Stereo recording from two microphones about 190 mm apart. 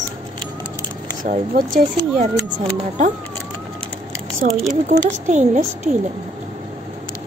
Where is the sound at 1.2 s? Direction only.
40° right (ahead or behind).